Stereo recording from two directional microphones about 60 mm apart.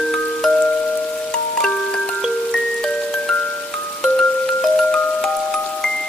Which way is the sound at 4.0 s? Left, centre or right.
Centre.